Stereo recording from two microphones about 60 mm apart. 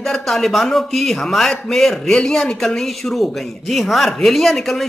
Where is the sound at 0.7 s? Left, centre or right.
Centre.